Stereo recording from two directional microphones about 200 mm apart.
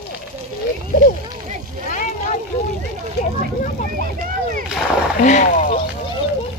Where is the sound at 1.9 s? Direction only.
40° left (ahead or behind).